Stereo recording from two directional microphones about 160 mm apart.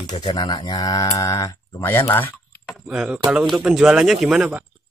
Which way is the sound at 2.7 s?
5° right (ahead or behind).